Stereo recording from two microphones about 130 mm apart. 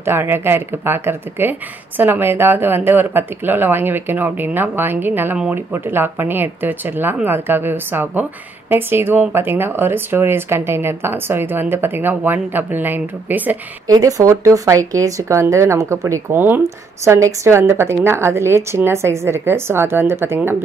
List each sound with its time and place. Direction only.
0.0 s speech: 15° right (ahead or behind)
13.8 s speech: 25° right (ahead or behind)